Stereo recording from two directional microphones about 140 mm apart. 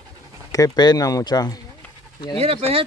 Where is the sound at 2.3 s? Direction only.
45° right (ahead or behind).